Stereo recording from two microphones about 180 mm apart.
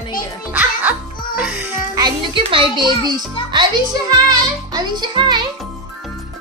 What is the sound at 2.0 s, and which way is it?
Music, 30° right (ahead or behind).